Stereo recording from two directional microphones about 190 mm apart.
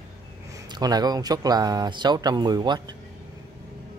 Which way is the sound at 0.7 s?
20° right (ahead or behind).